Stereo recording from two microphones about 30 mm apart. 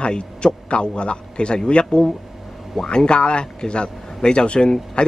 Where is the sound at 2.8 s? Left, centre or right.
Left.